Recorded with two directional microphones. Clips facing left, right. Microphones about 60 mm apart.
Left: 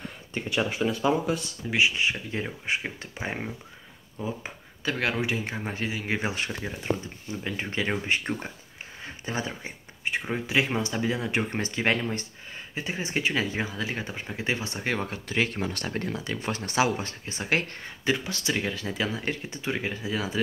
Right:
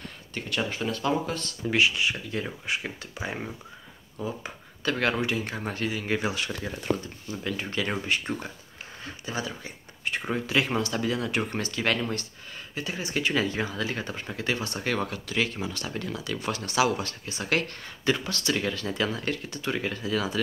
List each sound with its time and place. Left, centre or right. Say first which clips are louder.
0.3 s speech: left 2 dB; centre
2.0 s speech: left 1 dB; left
4.8 s speech: right 1 dB; centre
6.2 s speech: even; left
6.6 s speech: right 1 dB; centre
10.3 s speech: right 1 dB; centre
15.0 s speech: left 1 dB; left
15.6 s speech: left 2 dB; left; by 20.3 s centre